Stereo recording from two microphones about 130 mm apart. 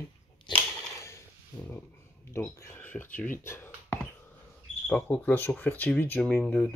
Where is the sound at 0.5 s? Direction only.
20° left (ahead or behind).